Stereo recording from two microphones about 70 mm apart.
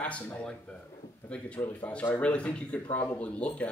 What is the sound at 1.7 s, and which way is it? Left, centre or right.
Speech, left.